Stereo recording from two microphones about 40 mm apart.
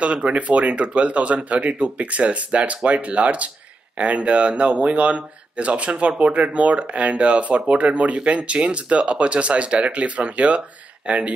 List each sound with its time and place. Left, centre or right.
0.0 s speech: right